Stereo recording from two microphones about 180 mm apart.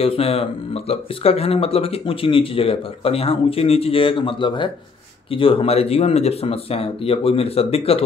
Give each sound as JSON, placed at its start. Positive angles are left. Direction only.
{"t": 0.0, "sound": "speech", "side_deg": 35}